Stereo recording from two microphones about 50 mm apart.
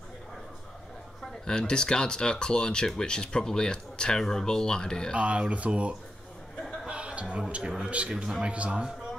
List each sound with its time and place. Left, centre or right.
1.4 s speech: centre
5.1 s speech: right
6.9 s a sound: right
8.1 s a man's voice: centre
8.5 s speech: right